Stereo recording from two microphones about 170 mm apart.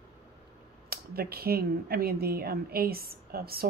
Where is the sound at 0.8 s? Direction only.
65° right (ahead or behind).